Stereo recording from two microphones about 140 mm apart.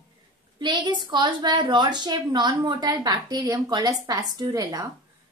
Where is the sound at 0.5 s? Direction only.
35° right (ahead or behind).